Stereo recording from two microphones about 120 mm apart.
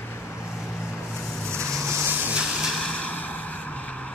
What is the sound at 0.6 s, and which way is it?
Vehicle, 5° right (ahead or behind).